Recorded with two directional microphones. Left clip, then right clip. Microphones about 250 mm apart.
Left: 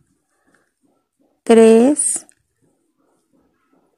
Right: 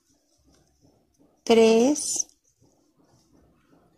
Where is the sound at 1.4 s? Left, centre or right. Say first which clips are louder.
Left 8 dB; centre.